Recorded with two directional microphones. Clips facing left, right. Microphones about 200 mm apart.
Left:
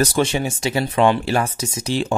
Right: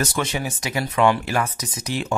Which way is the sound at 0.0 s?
30° left (ahead or behind).